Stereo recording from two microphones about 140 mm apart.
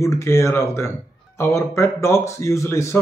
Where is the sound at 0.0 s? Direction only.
20° left (ahead or behind).